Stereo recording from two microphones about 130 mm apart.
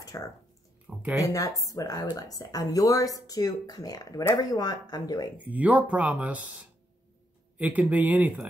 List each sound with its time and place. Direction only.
0.1 s speech: 25° left (ahead or behind)
0.9 s speech: 5° right (ahead or behind)
1.2 s speech: 25° left (ahead or behind)
5.4 s speech: 10° right (ahead or behind)